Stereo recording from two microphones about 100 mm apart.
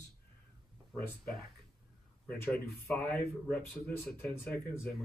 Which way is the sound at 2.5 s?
Centre (ahead or behind).